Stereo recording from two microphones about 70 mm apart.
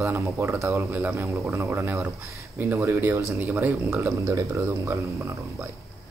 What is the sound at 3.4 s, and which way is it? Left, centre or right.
Speech, right.